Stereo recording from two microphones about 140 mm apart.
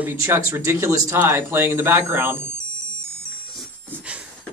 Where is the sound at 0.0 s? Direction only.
15° right (ahead or behind).